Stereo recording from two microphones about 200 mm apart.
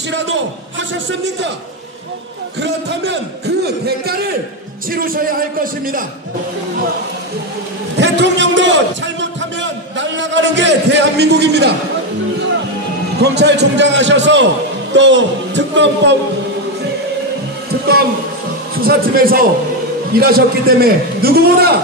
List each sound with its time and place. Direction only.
0.1 s a man's voice: 65° right (ahead or behind)
2.6 s a man's voice: 60° right (ahead or behind)
8.0 s a man's voice: 65° right (ahead or behind)
13.2 s a man's voice: 55° right (ahead or behind)
18.8 s a man's voice: 50° right (ahead or behind)